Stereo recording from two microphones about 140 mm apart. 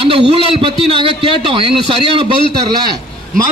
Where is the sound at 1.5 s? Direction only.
40° right (ahead or behind).